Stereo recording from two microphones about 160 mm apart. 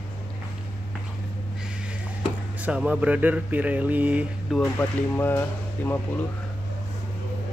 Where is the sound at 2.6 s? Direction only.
10° right (ahead or behind).